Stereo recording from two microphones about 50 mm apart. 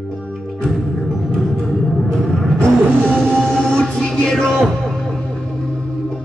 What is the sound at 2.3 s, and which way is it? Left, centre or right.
Music, centre.